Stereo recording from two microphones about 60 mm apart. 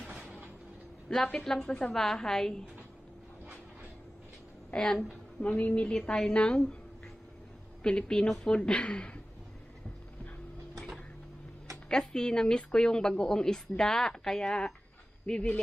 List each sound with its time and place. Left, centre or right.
1.0 s speech: centre
4.6 s a woman's voice: centre
7.8 s speech: centre
11.9 s speech: centre